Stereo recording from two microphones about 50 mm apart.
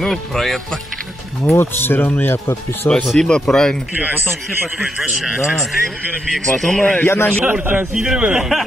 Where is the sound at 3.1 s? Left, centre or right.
Centre.